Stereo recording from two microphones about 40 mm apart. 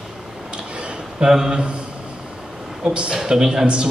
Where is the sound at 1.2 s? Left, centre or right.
Centre.